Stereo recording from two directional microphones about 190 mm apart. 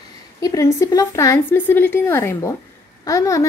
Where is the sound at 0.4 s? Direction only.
15° left (ahead or behind).